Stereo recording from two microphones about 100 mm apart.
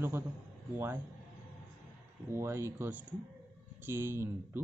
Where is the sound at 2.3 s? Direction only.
25° right (ahead or behind).